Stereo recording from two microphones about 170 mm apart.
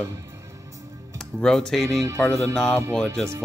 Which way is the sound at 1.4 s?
Centre (ahead or behind).